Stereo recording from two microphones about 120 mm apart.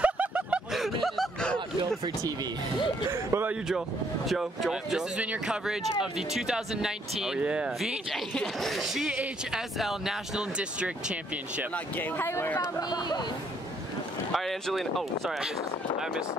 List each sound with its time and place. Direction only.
0.0 s a sound: 10° right (ahead or behind)
3.1 s speech: 20° right (ahead or behind)
4.3 s speech: centre (ahead or behind)
11.7 s speech: 15° left (ahead or behind)
14.3 s speech: centre (ahead or behind)